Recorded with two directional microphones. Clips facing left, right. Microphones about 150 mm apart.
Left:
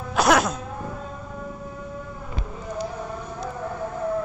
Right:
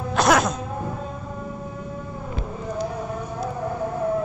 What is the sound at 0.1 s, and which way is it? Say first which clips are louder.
Music: even; 5° left (ahead or behind).